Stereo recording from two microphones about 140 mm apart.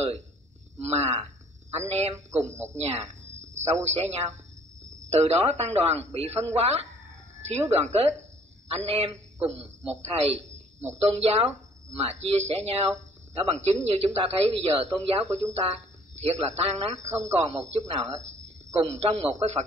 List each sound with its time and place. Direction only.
0.7 s a man's voice: 50° right (ahead or behind)